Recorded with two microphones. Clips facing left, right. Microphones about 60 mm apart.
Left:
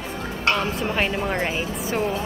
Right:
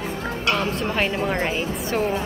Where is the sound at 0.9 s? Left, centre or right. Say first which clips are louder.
Right 1 dB; centre.